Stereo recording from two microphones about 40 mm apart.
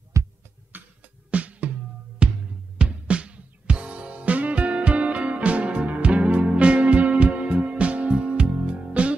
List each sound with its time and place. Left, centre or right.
0.7 s music: right
1.3 s music: right
2.2 s music: right